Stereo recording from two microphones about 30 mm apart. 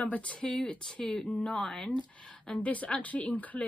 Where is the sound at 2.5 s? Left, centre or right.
Left.